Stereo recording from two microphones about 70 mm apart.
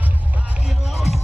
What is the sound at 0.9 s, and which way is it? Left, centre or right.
Music, centre.